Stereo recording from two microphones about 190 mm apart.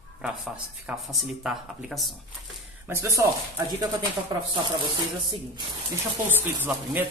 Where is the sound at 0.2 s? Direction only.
5° right (ahead or behind).